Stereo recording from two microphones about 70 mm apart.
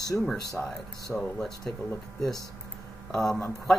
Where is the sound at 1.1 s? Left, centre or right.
Centre.